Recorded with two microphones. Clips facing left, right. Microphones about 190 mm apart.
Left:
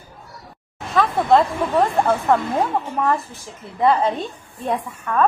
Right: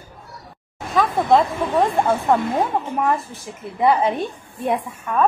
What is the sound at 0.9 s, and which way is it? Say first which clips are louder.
Speech: even; centre (ahead or behind).